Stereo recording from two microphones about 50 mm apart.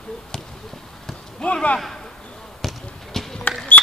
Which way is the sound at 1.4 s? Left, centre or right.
Left.